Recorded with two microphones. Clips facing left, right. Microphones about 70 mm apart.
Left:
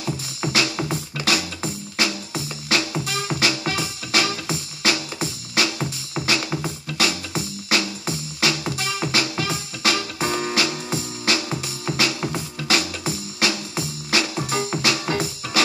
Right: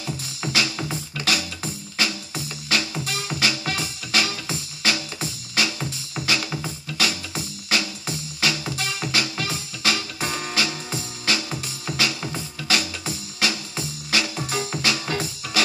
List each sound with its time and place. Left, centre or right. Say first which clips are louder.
0.0 s music: left 3 dB; left